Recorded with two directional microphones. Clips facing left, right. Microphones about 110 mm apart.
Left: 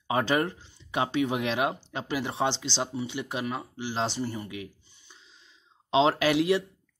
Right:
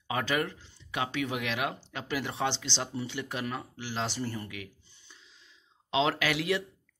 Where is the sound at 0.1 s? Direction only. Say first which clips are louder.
Left 5 dB; 30° left (ahead or behind).